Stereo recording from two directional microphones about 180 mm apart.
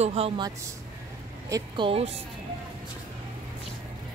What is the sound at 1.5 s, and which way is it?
Speech, 30° right (ahead or behind).